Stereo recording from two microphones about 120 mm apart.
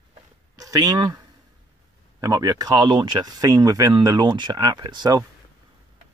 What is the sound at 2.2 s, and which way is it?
Speech, 30° right (ahead or behind).